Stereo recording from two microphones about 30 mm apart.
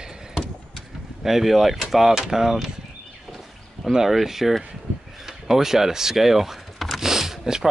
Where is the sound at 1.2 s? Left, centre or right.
Centre.